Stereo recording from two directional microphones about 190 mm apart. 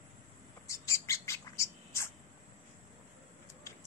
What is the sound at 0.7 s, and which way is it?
Bird, 15° left (ahead or behind).